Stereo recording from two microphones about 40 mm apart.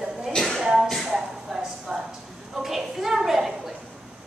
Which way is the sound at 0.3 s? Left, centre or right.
Centre.